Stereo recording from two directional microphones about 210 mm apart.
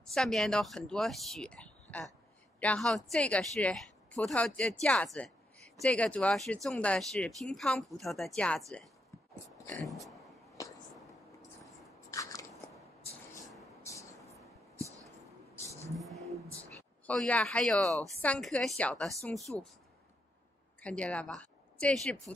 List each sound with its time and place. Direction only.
0.1 s speech: centre (ahead or behind)
10.6 s a sound: 15° left (ahead or behind)
12.1 s biting: 15° left (ahead or behind)
13.3 s vehicle: 15° left (ahead or behind)
15.5 s vehicle: 15° left (ahead or behind)
16.0 s vehicle: centre (ahead or behind)
17.0 s speech: 5° left (ahead or behind)
20.8 s speech: 5° left (ahead or behind)